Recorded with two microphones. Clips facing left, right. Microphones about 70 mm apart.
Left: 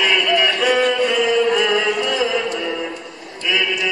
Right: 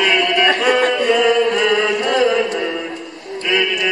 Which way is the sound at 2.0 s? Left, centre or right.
Right.